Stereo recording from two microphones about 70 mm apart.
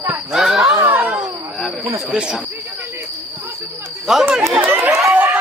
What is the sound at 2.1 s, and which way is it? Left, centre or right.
Speech, centre.